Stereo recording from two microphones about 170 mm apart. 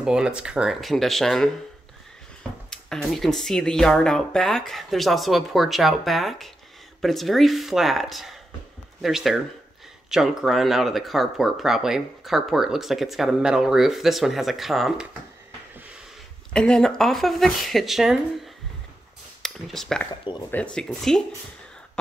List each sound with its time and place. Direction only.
0.0 s speech: 5° right (ahead or behind)
2.7 s speech: centre (ahead or behind)
16.5 s speech: 5° left (ahead or behind)
20.1 s speech: 25° left (ahead or behind)
20.5 s speech: 5° left (ahead or behind)